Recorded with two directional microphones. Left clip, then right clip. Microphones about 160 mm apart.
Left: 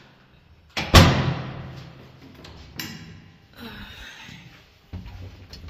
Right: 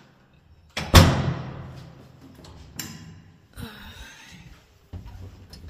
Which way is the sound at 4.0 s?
10° right (ahead or behind).